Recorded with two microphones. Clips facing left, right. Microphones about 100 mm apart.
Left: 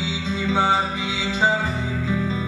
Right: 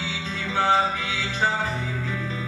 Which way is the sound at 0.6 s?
15° left (ahead or behind).